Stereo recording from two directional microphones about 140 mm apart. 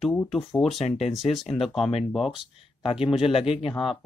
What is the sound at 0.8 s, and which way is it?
Speech, 50° left (ahead or behind).